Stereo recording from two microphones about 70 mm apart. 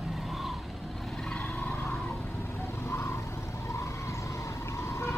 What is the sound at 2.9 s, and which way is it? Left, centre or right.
Vehicle, left.